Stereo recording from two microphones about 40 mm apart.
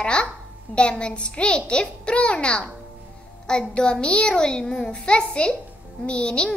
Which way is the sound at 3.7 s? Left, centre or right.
Left.